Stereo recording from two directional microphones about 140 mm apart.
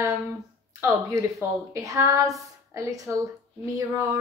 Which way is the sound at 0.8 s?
20° right (ahead or behind).